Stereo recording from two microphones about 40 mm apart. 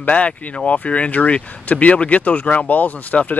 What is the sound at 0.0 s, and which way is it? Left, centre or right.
Speech, left.